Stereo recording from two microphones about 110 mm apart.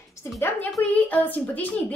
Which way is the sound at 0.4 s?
20° left (ahead or behind).